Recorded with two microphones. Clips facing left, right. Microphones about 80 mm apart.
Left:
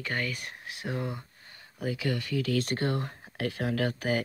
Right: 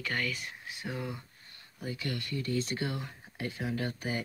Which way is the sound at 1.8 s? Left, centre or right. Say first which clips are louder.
Left 6 dB; left.